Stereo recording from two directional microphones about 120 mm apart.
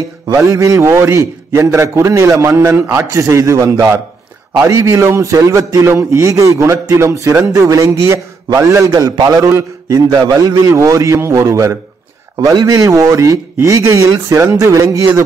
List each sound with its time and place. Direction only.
0.3 s a man's voice: 25° right (ahead or behind)